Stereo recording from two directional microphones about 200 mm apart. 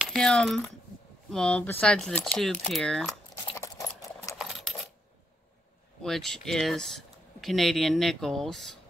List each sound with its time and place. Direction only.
0.0 s speech: centre (ahead or behind)
3.5 s a sound: 15° left (ahead or behind)
4.4 s coin: centre (ahead or behind)
6.0 s speech: centre (ahead or behind)